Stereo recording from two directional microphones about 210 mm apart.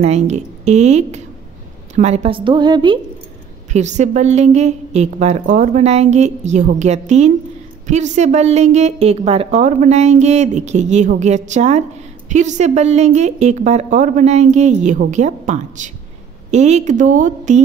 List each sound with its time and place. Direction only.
0.0 s a woman's voice: 30° right (ahead or behind)
3.7 s a woman's voice: 35° right (ahead or behind)